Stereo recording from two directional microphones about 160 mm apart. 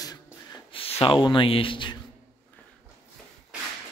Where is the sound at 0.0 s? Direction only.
25° left (ahead or behind).